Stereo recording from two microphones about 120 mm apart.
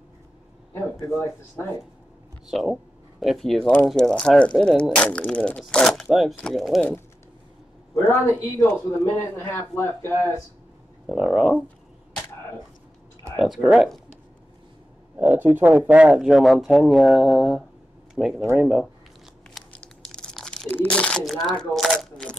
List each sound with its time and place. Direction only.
0.7 s speech: 20° left (ahead or behind)
2.4 s speech: centre (ahead or behind)
7.9 s speech: 20° left (ahead or behind)
11.1 s speech: 5° right (ahead or behind)
13.4 s speech: centre (ahead or behind)
15.1 s speech: 15° right (ahead or behind)
19.7 s crumpling: 10° left (ahead or behind)
21.3 s speech: centre (ahead or behind)
21.8 s crunch: 5° left (ahead or behind)